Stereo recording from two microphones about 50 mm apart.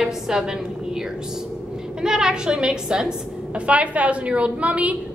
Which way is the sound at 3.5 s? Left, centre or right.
Right.